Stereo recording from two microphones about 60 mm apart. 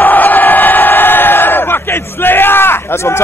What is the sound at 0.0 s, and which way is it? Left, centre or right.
Crowd, left.